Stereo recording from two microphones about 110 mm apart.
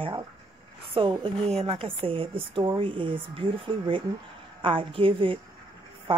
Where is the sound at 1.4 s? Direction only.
70° right (ahead or behind).